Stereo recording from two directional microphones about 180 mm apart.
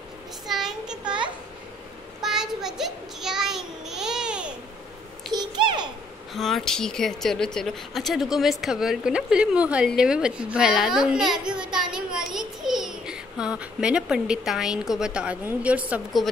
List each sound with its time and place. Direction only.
0.5 s child singing: centre (ahead or behind)
1.0 s children playing: 25° right (ahead or behind)
2.2 s child singing: centre (ahead or behind)
5.3 s a sound: 25° right (ahead or behind)
6.3 s speech: centre (ahead or behind)
11.7 s child singing: 5° right (ahead or behind)